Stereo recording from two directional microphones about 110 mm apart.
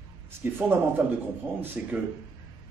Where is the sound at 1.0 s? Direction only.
15° right (ahead or behind).